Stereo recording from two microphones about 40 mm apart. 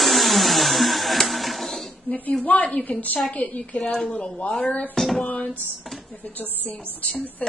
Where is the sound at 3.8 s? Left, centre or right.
Centre.